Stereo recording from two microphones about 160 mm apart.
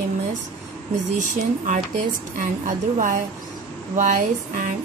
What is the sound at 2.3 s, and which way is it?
Speech, 55° right (ahead or behind).